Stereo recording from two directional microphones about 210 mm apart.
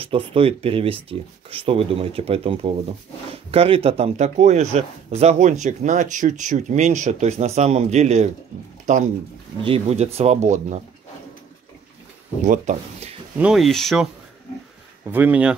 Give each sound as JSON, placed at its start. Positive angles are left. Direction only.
{"t": 0.0, "sound": "speech", "side_deg": -25}
{"t": 12.4, "sound": "speech", "side_deg": -35}
{"t": 13.4, "sound": "speech", "side_deg": 0}
{"t": 15.0, "sound": "speech", "side_deg": -10}